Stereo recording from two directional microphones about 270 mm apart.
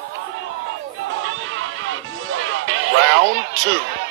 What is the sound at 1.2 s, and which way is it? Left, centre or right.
Music, right.